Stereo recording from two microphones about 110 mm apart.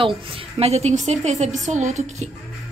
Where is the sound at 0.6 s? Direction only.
75° right (ahead or behind).